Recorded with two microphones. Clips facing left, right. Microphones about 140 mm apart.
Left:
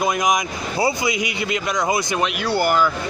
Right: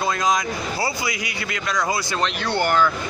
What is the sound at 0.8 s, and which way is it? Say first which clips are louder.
Speech: left 9 dB; 20° left (ahead or behind).